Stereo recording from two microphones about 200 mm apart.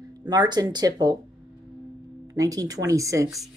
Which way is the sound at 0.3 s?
20° right (ahead or behind).